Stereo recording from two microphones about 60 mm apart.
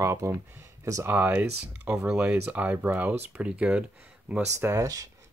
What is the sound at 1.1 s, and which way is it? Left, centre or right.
Speech, right.